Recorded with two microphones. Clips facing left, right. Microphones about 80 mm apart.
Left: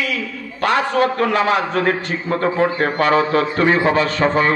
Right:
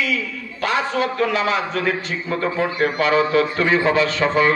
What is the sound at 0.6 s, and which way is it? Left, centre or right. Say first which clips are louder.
A man's voice: left 4 dB; left.